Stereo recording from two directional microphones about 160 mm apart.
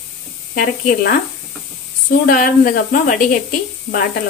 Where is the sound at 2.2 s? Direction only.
60° left (ahead or behind).